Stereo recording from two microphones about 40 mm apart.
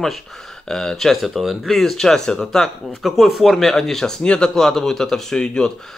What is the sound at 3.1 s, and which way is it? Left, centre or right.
Speech, centre.